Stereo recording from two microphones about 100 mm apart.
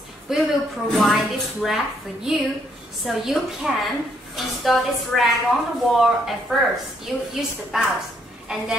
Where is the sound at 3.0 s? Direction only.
Centre (ahead or behind).